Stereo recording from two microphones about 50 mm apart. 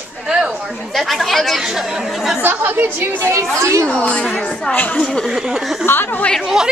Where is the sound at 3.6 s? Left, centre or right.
Right.